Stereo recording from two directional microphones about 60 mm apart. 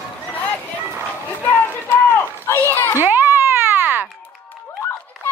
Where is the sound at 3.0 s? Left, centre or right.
Right.